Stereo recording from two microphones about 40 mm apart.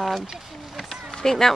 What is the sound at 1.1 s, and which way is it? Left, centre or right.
Speech, centre.